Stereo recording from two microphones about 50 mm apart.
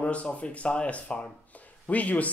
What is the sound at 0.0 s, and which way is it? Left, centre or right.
Speech, left.